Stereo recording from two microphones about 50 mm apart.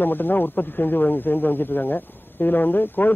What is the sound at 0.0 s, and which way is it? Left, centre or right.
Speech, left.